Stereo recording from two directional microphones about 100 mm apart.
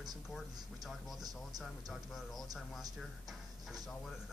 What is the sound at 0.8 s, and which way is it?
Speech, centre (ahead or behind).